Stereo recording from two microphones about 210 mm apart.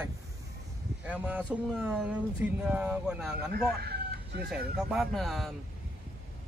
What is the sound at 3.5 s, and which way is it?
Chicken, 45° right (ahead or behind).